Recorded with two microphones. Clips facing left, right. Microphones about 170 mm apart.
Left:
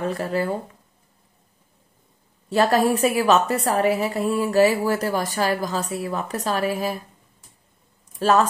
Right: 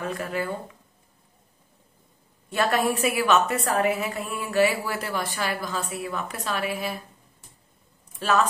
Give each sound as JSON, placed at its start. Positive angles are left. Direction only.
{"t": 0.0, "sound": "a woman's voice", "side_deg": 35}
{"t": 2.5, "sound": "a woman's voice", "side_deg": 35}
{"t": 8.2, "sound": "a woman's voice", "side_deg": 40}